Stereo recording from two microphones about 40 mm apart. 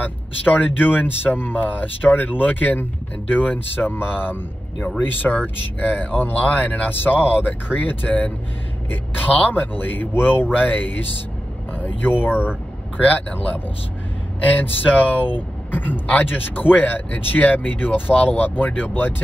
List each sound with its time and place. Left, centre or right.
0.0 s speech: left
10.5 s speech: left
12.9 s speech: left